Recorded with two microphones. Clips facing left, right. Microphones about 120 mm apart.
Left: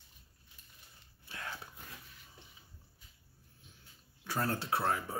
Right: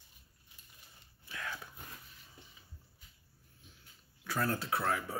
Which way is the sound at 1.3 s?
30° left (ahead or behind).